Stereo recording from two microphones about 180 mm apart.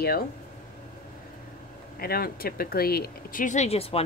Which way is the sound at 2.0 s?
55° left (ahead or behind).